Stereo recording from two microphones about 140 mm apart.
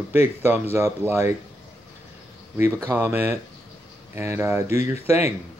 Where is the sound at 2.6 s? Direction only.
20° right (ahead or behind).